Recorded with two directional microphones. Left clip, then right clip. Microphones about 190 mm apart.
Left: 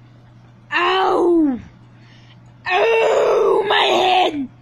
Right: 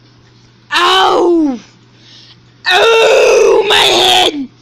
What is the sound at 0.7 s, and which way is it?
Groan, 15° right (ahead or behind).